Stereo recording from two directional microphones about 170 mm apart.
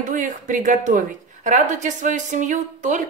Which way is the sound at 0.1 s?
50° right (ahead or behind).